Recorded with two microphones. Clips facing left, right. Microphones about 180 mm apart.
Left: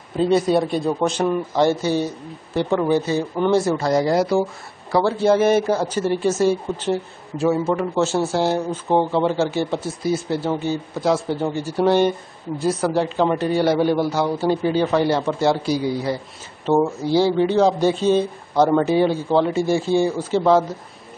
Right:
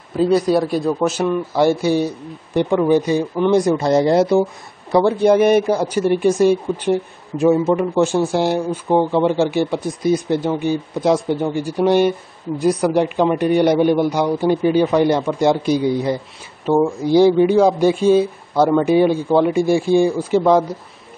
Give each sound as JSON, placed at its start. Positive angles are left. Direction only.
{"t": 0.2, "sound": "speech", "side_deg": 0}